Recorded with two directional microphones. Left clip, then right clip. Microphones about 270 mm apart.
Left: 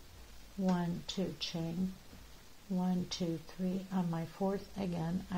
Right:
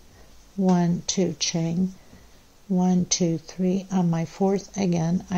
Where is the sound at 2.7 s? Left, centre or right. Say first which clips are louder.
Right 14 dB; right.